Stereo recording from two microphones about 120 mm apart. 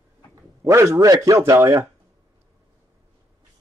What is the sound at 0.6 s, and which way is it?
A man's voice, 25° right (ahead or behind).